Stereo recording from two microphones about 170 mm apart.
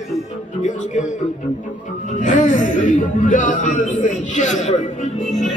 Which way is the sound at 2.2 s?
45° left (ahead or behind).